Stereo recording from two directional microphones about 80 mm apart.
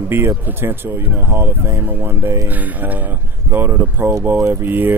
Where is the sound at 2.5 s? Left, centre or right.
Right.